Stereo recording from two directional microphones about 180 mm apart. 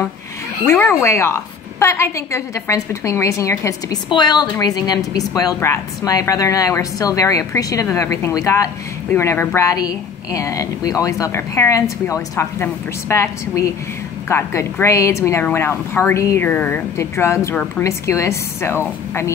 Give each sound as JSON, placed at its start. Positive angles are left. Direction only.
{"t": 0.7, "sound": "a woman's voice", "side_deg": 15}